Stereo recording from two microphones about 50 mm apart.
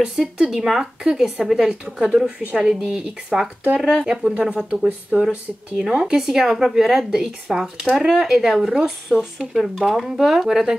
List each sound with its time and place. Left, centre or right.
0.0 s speech: centre
5.8 s speech: centre